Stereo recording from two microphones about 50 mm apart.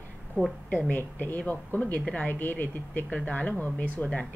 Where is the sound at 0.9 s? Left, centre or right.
Left.